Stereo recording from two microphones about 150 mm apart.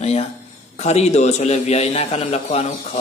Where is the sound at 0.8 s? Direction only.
45° left (ahead or behind).